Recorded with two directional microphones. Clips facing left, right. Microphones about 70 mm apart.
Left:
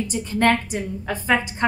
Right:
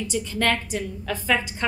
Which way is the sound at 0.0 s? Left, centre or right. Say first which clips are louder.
Left 4 dB; left.